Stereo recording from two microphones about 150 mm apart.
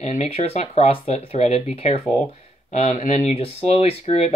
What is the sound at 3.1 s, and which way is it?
Speech, 45° left (ahead or behind).